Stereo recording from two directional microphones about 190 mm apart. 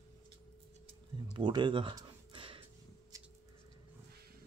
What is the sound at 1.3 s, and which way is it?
Music, 25° right (ahead or behind).